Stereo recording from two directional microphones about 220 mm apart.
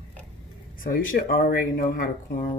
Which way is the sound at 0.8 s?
40° left (ahead or behind).